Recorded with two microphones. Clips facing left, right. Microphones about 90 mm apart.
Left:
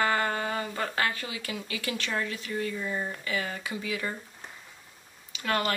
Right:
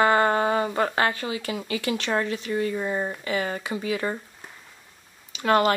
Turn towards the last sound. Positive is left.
turn(degrees=-35)  # may be behind; listen again after turning